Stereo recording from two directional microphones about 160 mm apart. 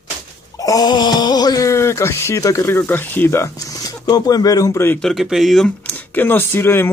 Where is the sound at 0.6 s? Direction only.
25° left (ahead or behind).